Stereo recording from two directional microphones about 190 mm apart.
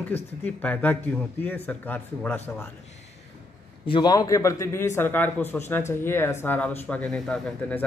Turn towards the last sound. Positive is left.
turn(degrees=5)  # may be behind; listen again after turning